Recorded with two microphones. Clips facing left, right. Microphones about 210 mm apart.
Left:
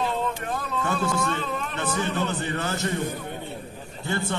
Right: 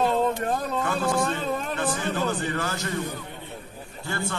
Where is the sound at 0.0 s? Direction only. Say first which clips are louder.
Right 5 dB; 45° right (ahead or behind).